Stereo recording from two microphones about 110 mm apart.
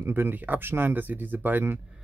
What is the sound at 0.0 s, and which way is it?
Speech, 20° right (ahead or behind).